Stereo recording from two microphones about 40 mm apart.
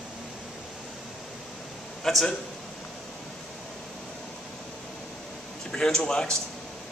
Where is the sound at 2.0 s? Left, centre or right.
Centre.